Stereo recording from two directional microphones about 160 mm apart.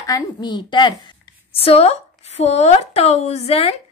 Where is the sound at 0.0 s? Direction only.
25° left (ahead or behind).